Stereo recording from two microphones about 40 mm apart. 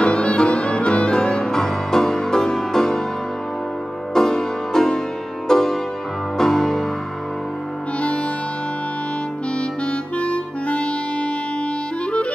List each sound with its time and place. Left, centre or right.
0.0 s music: left; by 3.0 s centre
4.1 s music: centre
9.6 s clarinet: left